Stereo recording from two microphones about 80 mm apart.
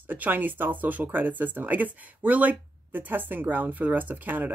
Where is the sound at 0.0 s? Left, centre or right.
Right.